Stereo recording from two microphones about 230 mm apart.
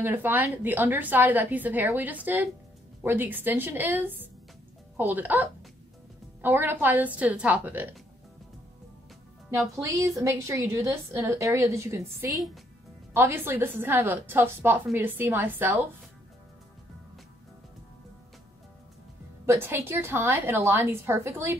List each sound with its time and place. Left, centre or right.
0.0 s a woman's voice: centre
9.8 s a woman's voice: centre
19.4 s a woman's voice: centre